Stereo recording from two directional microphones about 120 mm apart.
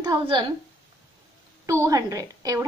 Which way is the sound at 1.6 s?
25° right (ahead or behind).